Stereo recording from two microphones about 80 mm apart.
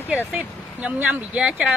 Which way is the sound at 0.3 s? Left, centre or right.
Centre.